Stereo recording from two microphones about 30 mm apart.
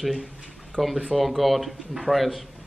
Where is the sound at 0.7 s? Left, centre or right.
Left.